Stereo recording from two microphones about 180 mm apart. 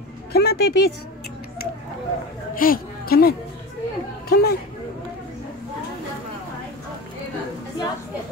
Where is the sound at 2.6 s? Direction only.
55° left (ahead or behind).